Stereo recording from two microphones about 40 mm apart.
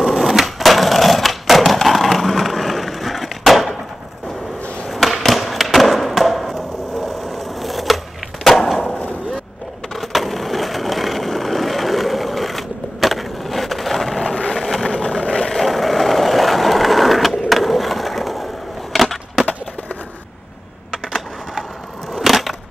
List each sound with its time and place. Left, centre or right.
0.0 s wood: centre
4.8 s skateboard: centre
9.9 s vehicle: centre
17.5 s skateboard: centre
18.9 s a sound: centre
22.1 s a sound: centre